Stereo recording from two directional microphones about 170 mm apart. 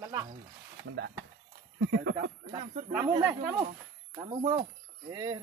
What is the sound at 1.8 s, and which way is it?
Speech, 90° right.